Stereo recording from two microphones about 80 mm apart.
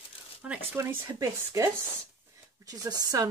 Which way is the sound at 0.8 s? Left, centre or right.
Right.